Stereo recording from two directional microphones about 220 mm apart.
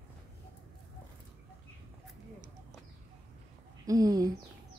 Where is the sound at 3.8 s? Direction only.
15° right (ahead or behind).